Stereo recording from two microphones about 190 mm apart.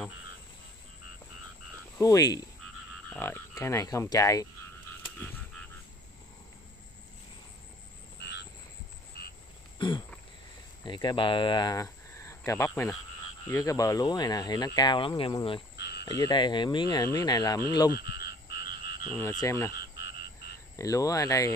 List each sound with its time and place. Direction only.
2.0 s speech: 20° left (ahead or behind)
2.6 s speech: 10° left (ahead or behind)
8.2 s frog: 65° left (ahead or behind)
9.8 s throat clearing: 25° left (ahead or behind)
10.9 s speech: 25° left (ahead or behind)
15.7 s cricket: 60° left (ahead or behind)
16.2 s speech: 20° left (ahead or behind)
17.9 s frog: 55° left (ahead or behind)
19.0 s speech: 10° left (ahead or behind)
19.8 s frog: 65° left (ahead or behind)
20.7 s speech: 20° left (ahead or behind)